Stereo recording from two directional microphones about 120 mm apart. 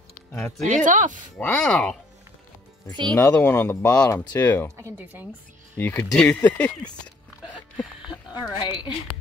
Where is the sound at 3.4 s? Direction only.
20° left (ahead or behind).